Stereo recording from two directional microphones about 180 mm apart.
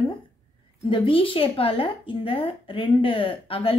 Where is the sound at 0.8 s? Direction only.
30° left (ahead or behind).